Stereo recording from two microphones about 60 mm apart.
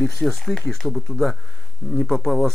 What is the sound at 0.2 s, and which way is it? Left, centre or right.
Speech, centre.